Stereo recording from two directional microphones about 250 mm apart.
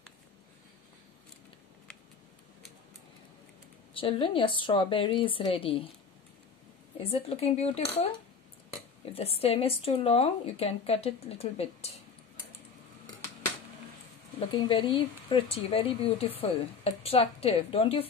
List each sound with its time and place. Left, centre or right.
3.9 s speech: left
7.0 s speech: left
9.1 s speech: left
14.4 s speech: centre